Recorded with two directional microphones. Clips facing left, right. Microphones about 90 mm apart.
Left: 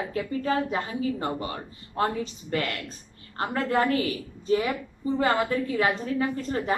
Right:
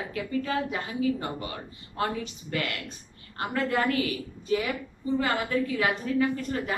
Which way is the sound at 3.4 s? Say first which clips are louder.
Left 2 dB; 35° left (ahead or behind).